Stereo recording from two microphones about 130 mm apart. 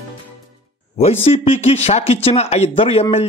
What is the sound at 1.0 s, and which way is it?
A man's voice, 50° left (ahead or behind).